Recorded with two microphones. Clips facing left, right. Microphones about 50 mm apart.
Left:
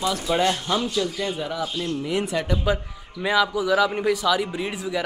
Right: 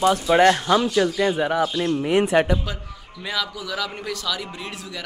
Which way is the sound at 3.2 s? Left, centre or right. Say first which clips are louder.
Left 8 dB; centre.